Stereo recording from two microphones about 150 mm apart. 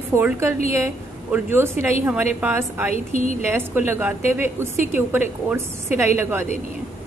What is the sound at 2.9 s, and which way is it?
Speech, 45° left (ahead or behind).